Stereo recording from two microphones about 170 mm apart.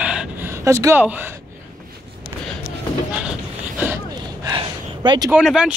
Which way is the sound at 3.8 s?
20° right (ahead or behind).